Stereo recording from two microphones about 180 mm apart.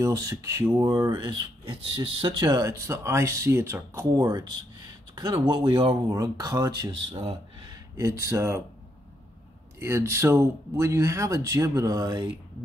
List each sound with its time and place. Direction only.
0.0 s speech: 20° right (ahead or behind)
7.0 s speech: 30° right (ahead or behind)
8.2 s speech: 15° right (ahead or behind)
9.8 s speech: 15° right (ahead or behind)